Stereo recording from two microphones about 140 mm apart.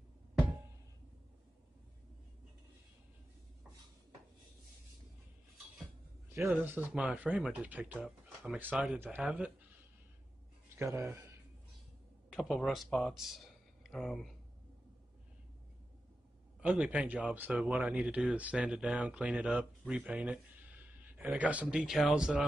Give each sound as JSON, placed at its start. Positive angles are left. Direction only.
{"t": 6.3, "sound": "a man's voice", "side_deg": -15}
{"t": 10.8, "sound": "speech", "side_deg": -20}
{"t": 12.3, "sound": "speech", "side_deg": 0}
{"t": 16.6, "sound": "a man's voice", "side_deg": -10}